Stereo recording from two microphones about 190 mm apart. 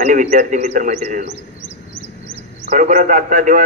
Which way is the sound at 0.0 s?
40° right (ahead or behind).